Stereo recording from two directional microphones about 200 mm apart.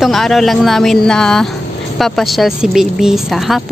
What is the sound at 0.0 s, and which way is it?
A woman's voice, centre (ahead or behind).